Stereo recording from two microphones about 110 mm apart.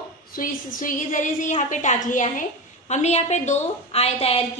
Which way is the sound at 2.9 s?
90° left.